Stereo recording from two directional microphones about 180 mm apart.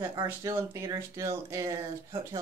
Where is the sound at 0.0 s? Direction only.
20° right (ahead or behind).